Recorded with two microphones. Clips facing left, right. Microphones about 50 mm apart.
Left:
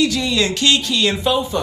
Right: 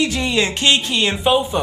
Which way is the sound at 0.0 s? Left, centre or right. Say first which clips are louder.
Left 1 dB; right.